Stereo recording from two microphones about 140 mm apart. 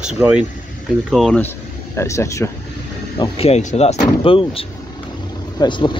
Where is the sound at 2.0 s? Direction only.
20° left (ahead or behind).